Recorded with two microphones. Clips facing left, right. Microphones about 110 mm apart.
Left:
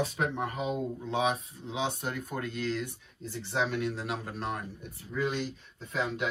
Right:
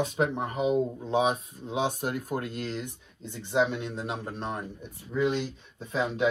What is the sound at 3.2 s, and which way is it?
Speech, 20° right (ahead or behind).